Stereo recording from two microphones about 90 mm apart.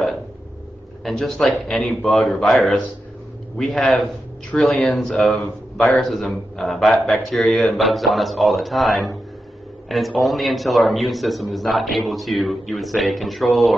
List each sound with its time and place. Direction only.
1.0 s a man's voice: 5° left (ahead or behind)